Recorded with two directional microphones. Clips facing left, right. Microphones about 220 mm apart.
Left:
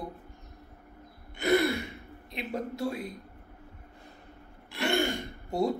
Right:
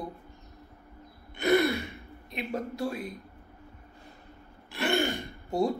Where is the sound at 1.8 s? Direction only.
20° left (ahead or behind).